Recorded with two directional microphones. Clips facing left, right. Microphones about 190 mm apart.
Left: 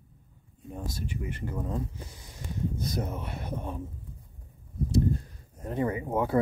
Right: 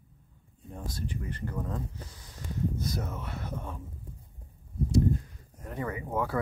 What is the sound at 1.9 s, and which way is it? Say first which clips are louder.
Speech: left 1 dB; 25° left (ahead or behind).